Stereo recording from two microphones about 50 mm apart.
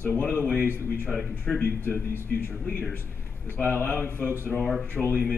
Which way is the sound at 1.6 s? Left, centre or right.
Left.